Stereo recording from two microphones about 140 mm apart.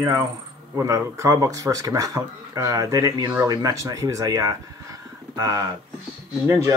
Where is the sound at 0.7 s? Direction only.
20° right (ahead or behind).